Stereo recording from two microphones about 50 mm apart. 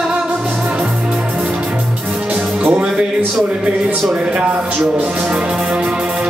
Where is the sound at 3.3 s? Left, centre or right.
Centre.